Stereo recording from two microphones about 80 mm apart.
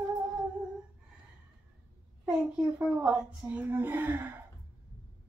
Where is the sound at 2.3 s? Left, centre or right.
Centre.